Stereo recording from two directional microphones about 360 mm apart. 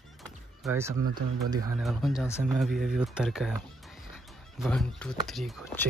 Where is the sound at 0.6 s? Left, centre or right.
Centre.